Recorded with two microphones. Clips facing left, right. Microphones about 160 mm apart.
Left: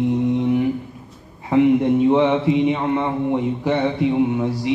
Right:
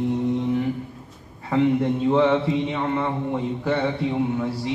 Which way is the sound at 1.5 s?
15° left (ahead or behind).